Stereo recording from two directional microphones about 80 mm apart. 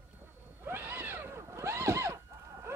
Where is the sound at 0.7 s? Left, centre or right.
Right.